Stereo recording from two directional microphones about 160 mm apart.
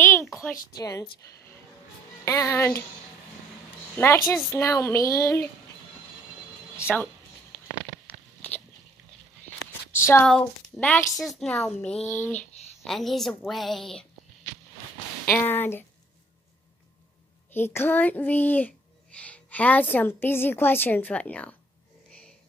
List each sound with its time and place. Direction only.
0.7 s speech: 25° left (ahead or behind)
2.2 s speech: 20° left (ahead or behind)
3.9 s speech: 15° left (ahead or behind)
6.8 s speech: 15° left (ahead or behind)
8.1 s patter: 10° left (ahead or behind)
9.9 s a woman's voice: 15° left (ahead or behind)
12.8 s a woman's voice: centre (ahead or behind)
15.2 s speech: 15° left (ahead or behind)
17.5 s speech: 15° left (ahead or behind)